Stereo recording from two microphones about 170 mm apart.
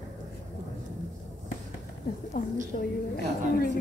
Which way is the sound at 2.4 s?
60° left (ahead or behind).